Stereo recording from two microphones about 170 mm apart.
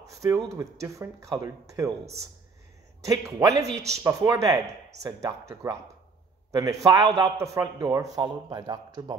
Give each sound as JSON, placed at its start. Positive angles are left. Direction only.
{"t": 0.0, "sound": "a sound", "side_deg": -20}
{"t": 0.6, "sound": "speech", "side_deg": -20}
{"t": 3.0, "sound": "a man's voice", "side_deg": -20}